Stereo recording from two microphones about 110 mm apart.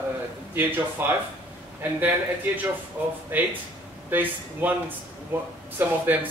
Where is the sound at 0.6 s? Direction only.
20° right (ahead or behind).